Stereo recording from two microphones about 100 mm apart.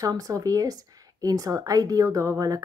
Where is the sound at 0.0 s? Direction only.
35° right (ahead or behind).